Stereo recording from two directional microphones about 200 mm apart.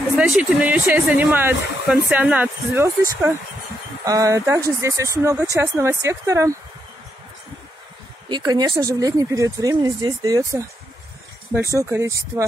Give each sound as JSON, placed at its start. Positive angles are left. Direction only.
{"t": 0.2, "sound": "speech", "side_deg": -5}
{"t": 8.3, "sound": "speech", "side_deg": -20}